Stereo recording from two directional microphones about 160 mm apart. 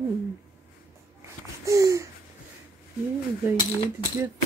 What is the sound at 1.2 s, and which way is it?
Babbling, 20° right (ahead or behind).